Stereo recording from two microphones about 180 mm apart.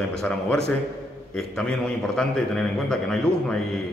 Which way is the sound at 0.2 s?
5° left (ahead or behind).